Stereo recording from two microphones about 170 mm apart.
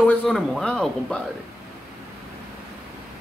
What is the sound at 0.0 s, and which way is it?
Speech, 5° left (ahead or behind).